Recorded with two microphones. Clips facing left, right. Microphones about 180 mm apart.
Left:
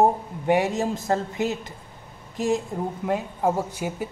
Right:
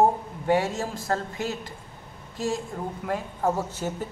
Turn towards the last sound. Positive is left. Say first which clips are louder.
# left 1 dB
turn(degrees=10)  # may be behind; listen again after turning